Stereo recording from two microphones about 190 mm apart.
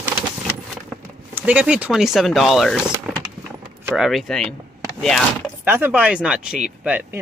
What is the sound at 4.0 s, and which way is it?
Speech, centre (ahead or behind).